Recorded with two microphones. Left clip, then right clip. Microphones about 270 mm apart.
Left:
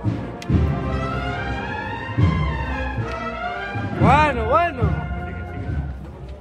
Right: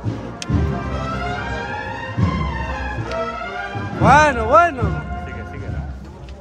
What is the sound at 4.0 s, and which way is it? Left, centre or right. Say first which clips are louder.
Music: right 4 dB; right.